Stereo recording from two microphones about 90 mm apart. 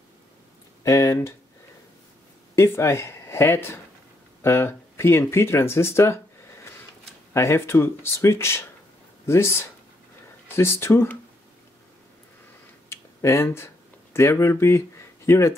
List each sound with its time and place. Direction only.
0.8 s speech: 35° left (ahead or behind)
2.5 s speech: 30° left (ahead or behind)
7.3 s speech: 30° left (ahead or behind)
12.9 s a sound: 30° left (ahead or behind)
14.1 s speech: 30° left (ahead or behind)